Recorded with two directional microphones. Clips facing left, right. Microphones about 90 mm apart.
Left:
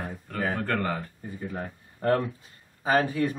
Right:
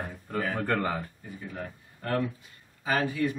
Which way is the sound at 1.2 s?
35° left (ahead or behind).